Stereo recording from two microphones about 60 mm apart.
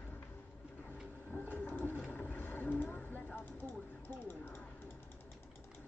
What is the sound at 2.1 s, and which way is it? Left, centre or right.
Vehicle, left.